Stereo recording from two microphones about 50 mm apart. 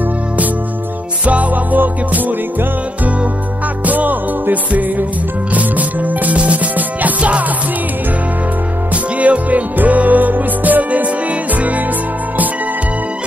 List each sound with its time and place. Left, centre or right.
1.2 s music: right
3.8 s music: right
8.9 s music: right